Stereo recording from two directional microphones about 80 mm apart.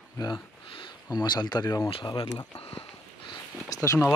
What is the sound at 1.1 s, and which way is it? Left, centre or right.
Speech, left.